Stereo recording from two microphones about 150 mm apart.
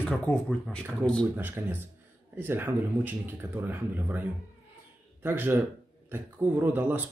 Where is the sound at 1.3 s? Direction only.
15° right (ahead or behind).